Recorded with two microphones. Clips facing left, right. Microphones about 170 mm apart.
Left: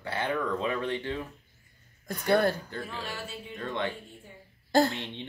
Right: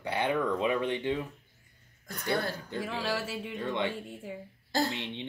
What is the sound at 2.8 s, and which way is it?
Music, 90° right.